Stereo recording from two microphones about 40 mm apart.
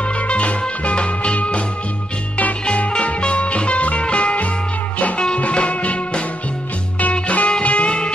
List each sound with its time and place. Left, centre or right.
0.3 s music: left
2.9 s music: left